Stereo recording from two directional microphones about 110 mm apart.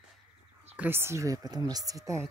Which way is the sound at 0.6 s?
20° right (ahead or behind).